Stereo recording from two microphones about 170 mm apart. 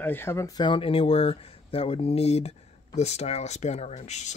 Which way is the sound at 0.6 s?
30° left (ahead or behind).